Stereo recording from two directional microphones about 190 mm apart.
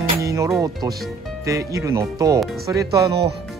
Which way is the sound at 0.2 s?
15° right (ahead or behind).